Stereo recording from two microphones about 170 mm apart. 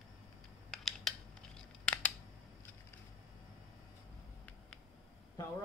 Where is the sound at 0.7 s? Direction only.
Centre (ahead or behind).